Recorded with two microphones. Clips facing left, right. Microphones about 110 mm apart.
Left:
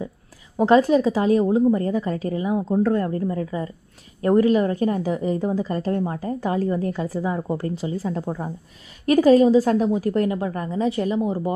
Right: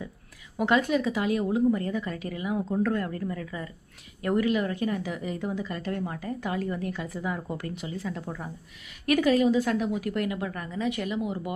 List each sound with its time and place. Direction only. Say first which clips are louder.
0.6 s a woman's voice: left 8 dB; 35° left (ahead or behind)